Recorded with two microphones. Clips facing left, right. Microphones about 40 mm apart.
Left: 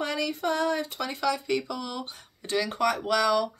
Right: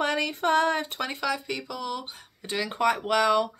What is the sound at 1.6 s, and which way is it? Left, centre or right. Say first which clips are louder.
Speech: right 1 dB; centre.